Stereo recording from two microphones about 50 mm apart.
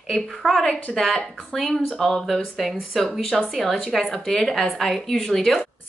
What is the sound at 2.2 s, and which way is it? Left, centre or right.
A woman's voice, centre.